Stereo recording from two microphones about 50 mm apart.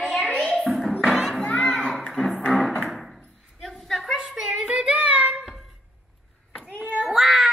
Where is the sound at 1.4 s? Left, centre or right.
Left.